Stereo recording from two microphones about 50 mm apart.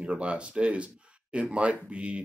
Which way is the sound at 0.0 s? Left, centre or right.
Right.